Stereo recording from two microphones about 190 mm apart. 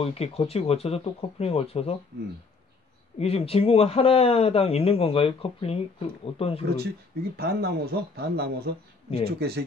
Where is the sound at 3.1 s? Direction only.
30° left (ahead or behind).